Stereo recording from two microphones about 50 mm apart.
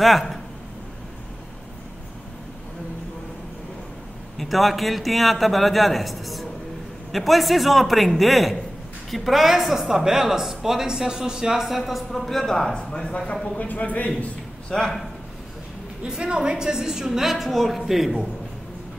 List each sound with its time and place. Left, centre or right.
0.0 s speech: centre
4.4 s a man's voice: centre
11.6 s speech: centre
13.6 s a man's voice: left
14.7 s speech: centre
16.1 s a woman's voice: centre